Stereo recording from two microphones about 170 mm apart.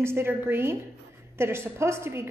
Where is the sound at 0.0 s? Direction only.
15° right (ahead or behind).